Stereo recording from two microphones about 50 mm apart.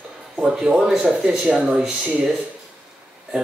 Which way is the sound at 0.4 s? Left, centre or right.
Centre.